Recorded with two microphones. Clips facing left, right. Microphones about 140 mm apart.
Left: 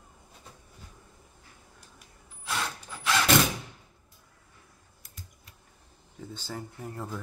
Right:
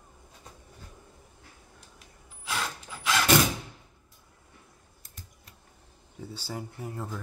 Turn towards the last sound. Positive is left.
turn(degrees=0)  # may be behind; listen again after turning